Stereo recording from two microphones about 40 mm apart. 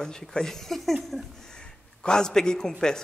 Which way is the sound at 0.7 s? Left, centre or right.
Centre.